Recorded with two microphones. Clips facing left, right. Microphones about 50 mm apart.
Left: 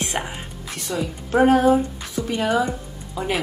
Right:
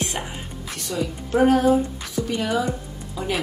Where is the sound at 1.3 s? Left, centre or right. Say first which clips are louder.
Left 2 dB; left.